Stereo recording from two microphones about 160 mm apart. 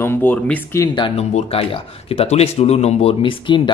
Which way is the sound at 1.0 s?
30° left (ahead or behind).